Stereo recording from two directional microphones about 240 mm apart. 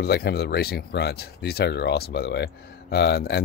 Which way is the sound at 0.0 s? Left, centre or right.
Left.